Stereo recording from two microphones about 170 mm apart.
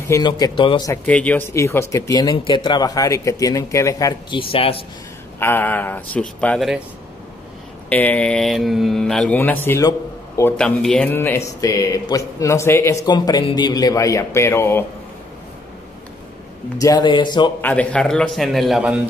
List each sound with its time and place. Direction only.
0.1 s speech: 25° left (ahead or behind)
1.0 s speech: 10° left (ahead or behind)
4.4 s speech: 35° left (ahead or behind)
5.4 s speech: 10° left (ahead or behind)
7.9 s speech: 10° left (ahead or behind)
10.5 s speech: 5° left (ahead or behind)
16.7 s speech: 20° left (ahead or behind)
17.6 s a man's voice: 10° left (ahead or behind)